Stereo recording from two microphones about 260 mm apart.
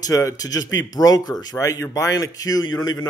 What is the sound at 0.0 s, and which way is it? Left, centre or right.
Speech, centre.